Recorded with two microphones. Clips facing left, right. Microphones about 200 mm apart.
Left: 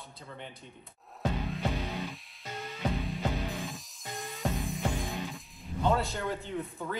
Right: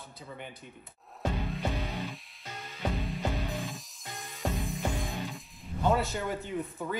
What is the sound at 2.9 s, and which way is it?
Music, centre (ahead or behind).